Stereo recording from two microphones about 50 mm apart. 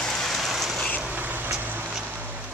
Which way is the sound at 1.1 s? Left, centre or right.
Right.